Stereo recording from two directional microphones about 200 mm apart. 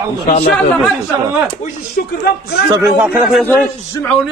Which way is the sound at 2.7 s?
10° right (ahead or behind).